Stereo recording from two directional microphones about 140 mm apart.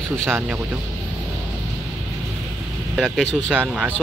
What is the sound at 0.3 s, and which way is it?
Speech, 15° right (ahead or behind).